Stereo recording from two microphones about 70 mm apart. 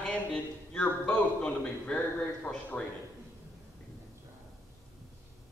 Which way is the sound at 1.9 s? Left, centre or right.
Left.